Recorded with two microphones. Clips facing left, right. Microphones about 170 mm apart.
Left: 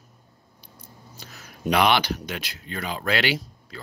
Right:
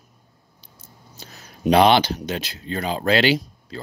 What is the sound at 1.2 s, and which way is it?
Speech, 30° right (ahead or behind).